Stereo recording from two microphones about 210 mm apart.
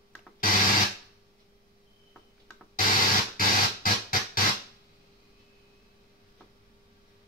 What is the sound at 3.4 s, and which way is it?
Synthesizer, 40° left (ahead or behind).